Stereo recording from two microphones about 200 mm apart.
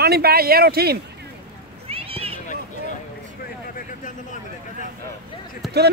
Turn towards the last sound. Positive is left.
turn(degrees=0)  # may be behind; listen again after turning